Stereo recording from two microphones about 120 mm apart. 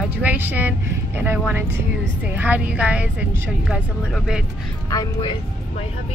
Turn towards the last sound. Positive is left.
turn(degrees=30)  # may be behind; listen again after turning